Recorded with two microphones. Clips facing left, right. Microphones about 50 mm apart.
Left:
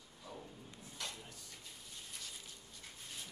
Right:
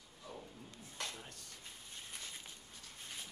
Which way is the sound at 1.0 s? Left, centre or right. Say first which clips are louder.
Right 2 dB; right.